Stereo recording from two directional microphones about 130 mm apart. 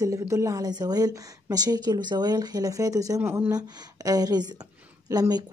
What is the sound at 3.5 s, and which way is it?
Speech, 30° right (ahead or behind).